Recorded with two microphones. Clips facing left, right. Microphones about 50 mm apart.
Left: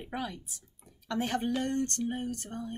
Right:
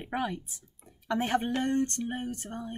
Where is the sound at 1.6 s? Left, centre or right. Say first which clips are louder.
Right 2 dB; right.